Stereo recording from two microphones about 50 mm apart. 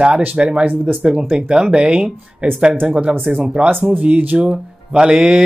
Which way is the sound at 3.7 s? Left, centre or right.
Right.